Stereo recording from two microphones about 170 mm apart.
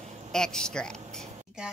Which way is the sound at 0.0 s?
40° right (ahead or behind).